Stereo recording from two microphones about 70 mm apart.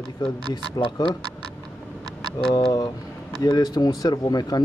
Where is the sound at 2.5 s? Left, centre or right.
Left.